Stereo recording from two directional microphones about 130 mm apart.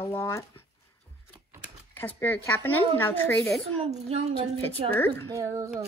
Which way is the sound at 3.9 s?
55° right (ahead or behind).